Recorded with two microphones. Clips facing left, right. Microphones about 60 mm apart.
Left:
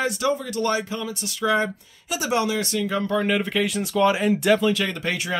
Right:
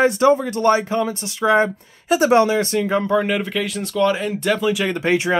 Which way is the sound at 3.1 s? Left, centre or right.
Centre.